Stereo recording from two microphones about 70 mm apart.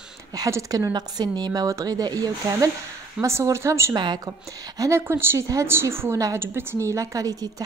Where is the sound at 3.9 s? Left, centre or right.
Right.